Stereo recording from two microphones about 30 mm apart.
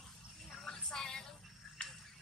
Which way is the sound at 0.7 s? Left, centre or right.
Left.